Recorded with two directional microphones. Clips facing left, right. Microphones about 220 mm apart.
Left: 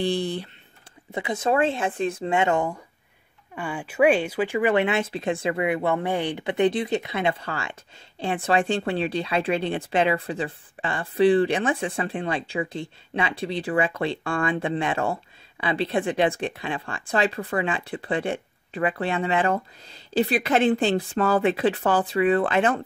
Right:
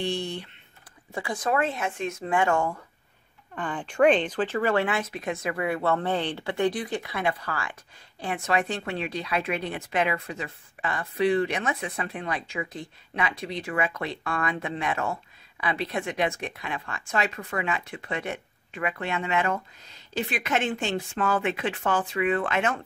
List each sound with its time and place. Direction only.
0.0 s speech: 35° left (ahead or behind)
1.1 s speech: 20° left (ahead or behind)